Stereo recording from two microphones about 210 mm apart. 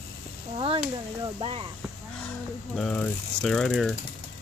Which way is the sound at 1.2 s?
25° right (ahead or behind).